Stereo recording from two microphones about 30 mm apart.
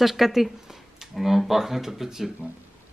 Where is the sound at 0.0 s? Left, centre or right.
Centre.